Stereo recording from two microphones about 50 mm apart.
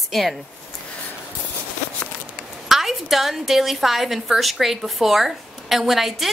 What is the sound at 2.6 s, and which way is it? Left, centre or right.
A woman's voice, centre.